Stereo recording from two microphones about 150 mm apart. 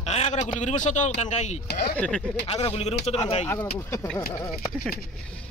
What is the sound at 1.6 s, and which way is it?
Speech, 90° left.